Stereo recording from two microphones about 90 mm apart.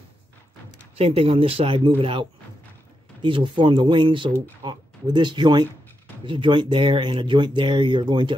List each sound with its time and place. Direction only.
0.9 s speech: 90° right; by 5.7 s 55° right (ahead or behind)
6.2 s speech: 70° right (ahead or behind)